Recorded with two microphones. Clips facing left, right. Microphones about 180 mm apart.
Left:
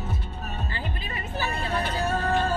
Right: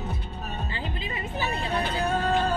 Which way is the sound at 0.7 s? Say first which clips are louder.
Right 1 dB; 20° right (ahead or behind).